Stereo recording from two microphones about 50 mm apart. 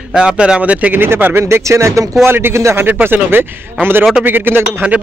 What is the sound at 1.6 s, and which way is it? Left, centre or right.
Speech, right.